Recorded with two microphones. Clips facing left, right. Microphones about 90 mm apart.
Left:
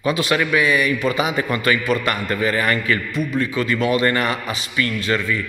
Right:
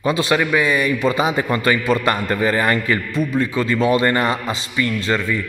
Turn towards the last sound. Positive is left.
turn(degrees=-30)  # may be behind; listen again after turning